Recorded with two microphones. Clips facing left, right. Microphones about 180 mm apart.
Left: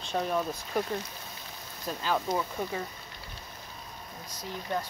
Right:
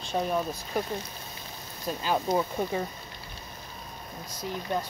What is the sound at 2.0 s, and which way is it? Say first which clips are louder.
Speech: right 3 dB; 20° right (ahead or behind).